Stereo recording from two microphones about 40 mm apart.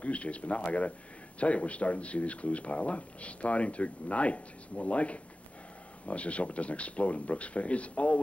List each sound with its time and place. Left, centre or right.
0.0 s speech: left